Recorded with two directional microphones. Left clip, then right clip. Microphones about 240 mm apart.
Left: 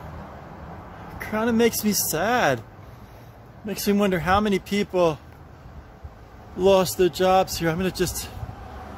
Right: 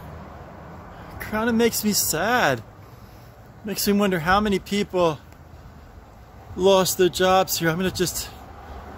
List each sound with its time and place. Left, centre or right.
1.2 s speech: centre
3.6 s speech: centre
6.5 s speech: centre